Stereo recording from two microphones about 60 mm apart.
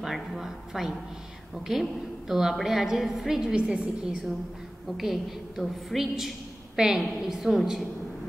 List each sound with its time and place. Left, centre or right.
0.0 s a woman's voice: centre
3.5 s a woman's voice: centre
4.0 s a woman's voice: centre